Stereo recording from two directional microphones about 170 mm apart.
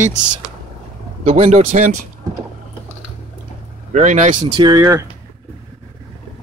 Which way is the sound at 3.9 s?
45° right (ahead or behind).